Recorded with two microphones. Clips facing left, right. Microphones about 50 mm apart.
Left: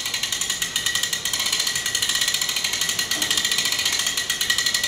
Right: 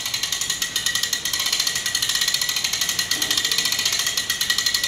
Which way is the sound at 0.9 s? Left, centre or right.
Centre.